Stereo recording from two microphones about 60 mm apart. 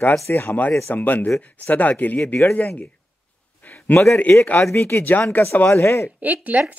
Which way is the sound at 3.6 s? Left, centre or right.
Left.